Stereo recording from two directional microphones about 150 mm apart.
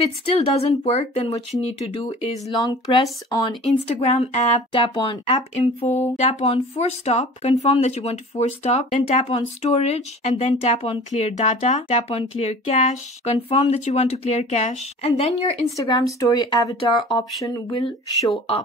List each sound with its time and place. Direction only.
0.5 s speech: 45° left (ahead or behind)
2.6 s speech: 25° left (ahead or behind)
3.6 s speech: 45° left (ahead or behind)
5.6 s speech: 45° left (ahead or behind)
15.7 s speech: 20° left (ahead or behind)